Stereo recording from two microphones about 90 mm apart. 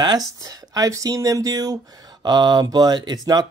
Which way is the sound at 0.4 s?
40° right (ahead or behind).